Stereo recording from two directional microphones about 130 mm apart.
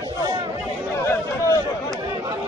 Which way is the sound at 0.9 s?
25° left (ahead or behind).